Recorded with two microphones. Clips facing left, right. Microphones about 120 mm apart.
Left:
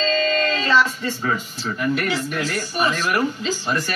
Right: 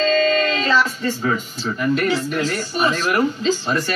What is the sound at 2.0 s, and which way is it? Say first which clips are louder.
Speech: right 4 dB; 30° right (ahead or behind).